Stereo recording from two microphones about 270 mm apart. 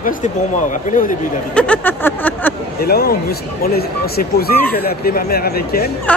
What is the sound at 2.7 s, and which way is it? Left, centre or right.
Speech, left.